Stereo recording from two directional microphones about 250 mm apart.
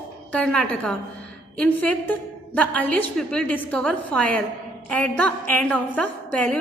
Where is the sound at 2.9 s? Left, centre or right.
Right.